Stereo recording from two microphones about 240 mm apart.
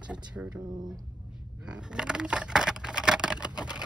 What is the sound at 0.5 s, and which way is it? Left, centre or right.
Speech, centre.